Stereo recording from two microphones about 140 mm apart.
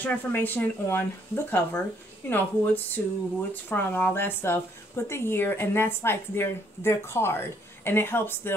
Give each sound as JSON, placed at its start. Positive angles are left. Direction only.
{"t": 0.0, "sound": "a woman's voice", "side_deg": 15}